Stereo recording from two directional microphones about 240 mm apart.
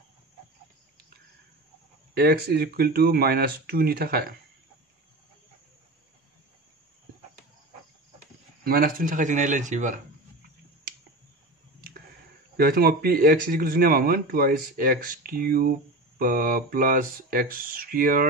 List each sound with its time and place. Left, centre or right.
2.1 s speech: right
8.6 s speech: right
12.5 s speech: right